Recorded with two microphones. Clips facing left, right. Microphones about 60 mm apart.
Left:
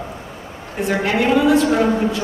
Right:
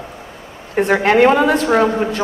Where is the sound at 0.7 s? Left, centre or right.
Right.